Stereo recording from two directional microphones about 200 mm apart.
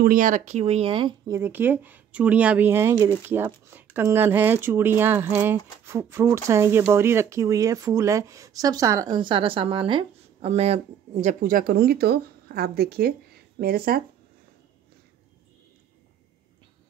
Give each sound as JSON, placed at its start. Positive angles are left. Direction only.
{"t": 0.0, "sound": "speech", "side_deg": -45}